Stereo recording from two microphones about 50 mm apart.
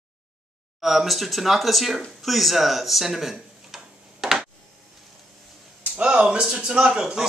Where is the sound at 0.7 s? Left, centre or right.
Centre.